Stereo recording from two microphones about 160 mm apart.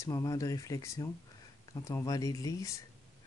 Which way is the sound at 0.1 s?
20° left (ahead or behind).